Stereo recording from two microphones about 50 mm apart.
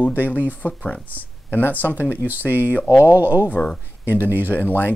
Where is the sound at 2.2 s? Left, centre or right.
Right.